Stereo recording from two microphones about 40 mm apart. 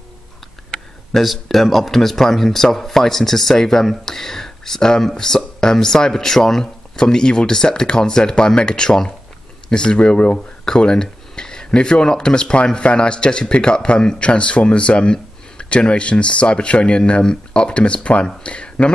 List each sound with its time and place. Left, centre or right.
1.1 s a man's voice: centre; by 18.9 s left